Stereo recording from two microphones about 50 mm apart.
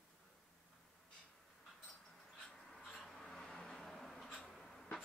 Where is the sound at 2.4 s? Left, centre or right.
Centre.